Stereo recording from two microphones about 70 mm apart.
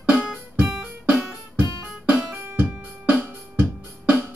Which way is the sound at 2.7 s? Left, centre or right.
Right.